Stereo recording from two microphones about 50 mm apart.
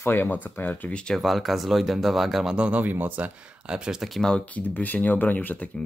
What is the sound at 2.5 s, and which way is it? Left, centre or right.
Speech, right.